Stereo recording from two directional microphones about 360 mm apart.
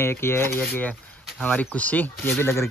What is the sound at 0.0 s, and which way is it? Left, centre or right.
Speech, centre.